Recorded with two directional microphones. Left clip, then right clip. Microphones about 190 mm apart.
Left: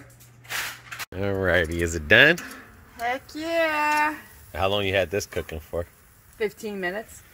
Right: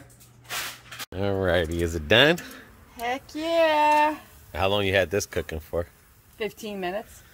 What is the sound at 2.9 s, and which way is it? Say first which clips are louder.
Speech: left 1 dB; 45° right (ahead or behind).